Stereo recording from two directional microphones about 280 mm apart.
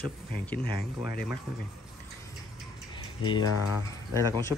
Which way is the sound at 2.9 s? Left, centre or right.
Centre.